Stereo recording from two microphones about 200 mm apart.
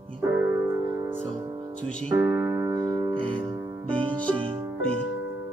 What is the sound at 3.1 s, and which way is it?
Music, 25° right (ahead or behind).